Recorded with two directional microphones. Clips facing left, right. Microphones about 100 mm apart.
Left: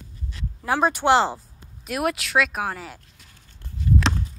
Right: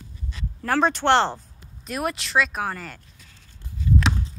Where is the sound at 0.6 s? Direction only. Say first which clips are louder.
Even; 10° left (ahead or behind).